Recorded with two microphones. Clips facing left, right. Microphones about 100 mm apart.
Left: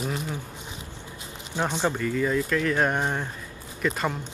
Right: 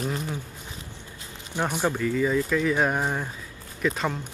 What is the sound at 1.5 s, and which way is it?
Speech, 15° right (ahead or behind).